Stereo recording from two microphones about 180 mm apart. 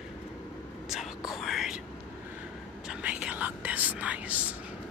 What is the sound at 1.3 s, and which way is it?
Whispering, centre (ahead or behind).